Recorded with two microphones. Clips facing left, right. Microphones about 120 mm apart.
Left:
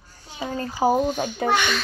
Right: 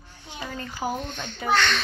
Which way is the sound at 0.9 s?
5° left (ahead or behind).